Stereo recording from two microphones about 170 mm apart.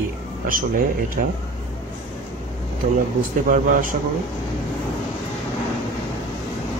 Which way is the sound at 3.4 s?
50° right (ahead or behind).